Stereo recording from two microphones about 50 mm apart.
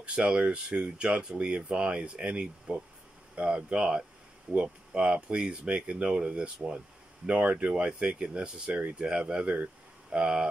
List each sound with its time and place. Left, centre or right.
0.0 s speech: right